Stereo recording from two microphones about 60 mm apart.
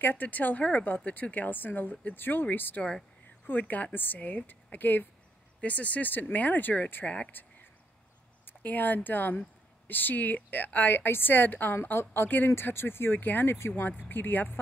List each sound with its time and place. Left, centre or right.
0.0 s speech: left
8.5 s speech: left